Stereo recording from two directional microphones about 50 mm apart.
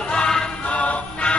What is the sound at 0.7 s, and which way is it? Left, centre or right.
Music, left.